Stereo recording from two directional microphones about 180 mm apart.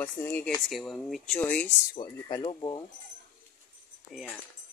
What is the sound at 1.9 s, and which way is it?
Speech, 25° left (ahead or behind).